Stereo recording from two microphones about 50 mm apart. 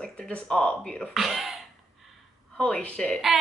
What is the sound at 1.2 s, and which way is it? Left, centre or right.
Throat clearing, centre.